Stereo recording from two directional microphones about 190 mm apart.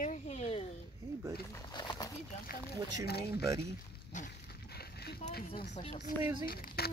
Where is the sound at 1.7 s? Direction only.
25° left (ahead or behind).